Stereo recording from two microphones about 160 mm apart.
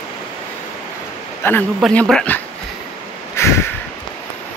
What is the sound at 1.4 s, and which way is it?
Speech, 15° left (ahead or behind).